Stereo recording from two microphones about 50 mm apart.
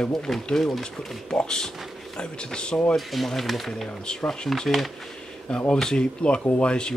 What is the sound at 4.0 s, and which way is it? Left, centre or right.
Speech, centre.